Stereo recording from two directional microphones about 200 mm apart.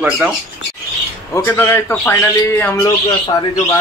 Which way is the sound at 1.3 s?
10° left (ahead or behind).